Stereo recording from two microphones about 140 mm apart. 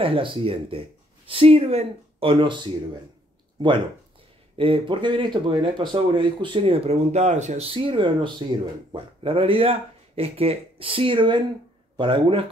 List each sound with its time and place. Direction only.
0.0 s speech: 40° right (ahead or behind)
4.6 s speech: 40° right (ahead or behind)